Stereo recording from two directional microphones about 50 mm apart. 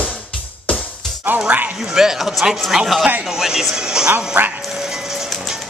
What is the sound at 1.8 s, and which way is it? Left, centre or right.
Speech, centre.